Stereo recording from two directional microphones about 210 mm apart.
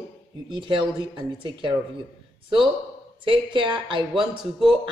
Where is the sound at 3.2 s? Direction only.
25° right (ahead or behind).